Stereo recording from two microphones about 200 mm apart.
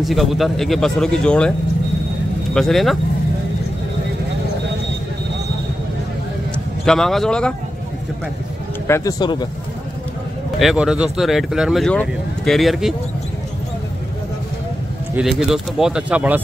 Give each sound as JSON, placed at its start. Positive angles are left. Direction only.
{"t": 0.0, "sound": "speech", "side_deg": 0}
{"t": 2.5, "sound": "speech", "side_deg": 0}
{"t": 6.8, "sound": "speech", "side_deg": 0}
{"t": 8.8, "sound": "speech", "side_deg": 15}
{"t": 10.6, "sound": "speech", "side_deg": 0}
{"t": 15.1, "sound": "speech", "side_deg": 0}